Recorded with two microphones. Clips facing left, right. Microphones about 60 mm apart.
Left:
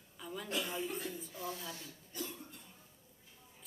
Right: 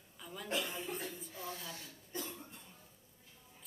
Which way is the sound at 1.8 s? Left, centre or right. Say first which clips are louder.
Even; right.